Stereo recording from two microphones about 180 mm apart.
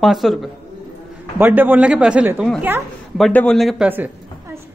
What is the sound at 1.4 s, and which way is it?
A man's voice, 10° right (ahead or behind).